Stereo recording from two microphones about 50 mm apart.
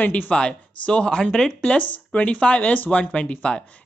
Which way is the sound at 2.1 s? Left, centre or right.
Left.